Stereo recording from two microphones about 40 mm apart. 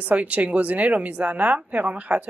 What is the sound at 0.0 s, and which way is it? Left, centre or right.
Speech, right.